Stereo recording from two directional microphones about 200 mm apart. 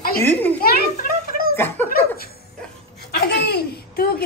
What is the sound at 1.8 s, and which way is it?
Laughter, 50° left (ahead or behind).